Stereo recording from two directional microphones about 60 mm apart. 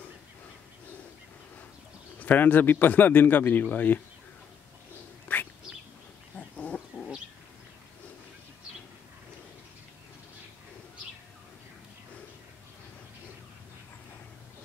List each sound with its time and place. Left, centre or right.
2.1 s a man's voice: left
5.3 s bird: left
6.3 s dog: left